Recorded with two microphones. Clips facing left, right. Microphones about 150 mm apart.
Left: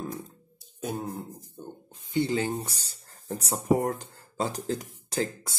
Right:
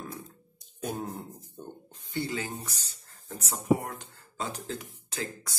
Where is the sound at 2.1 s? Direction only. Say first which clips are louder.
Left 7 dB; 30° left (ahead or behind).